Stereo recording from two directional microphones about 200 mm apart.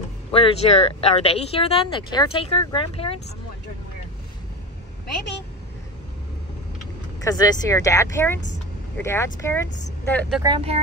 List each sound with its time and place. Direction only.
0.3 s speech: 30° left (ahead or behind)
7.2 s speech: 20° left (ahead or behind)
10.4 s speech: 25° right (ahead or behind)